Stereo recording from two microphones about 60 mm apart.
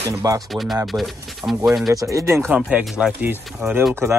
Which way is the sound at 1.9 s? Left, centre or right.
Right.